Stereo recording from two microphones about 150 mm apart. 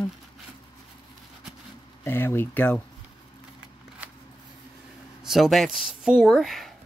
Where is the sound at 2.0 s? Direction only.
15° left (ahead or behind).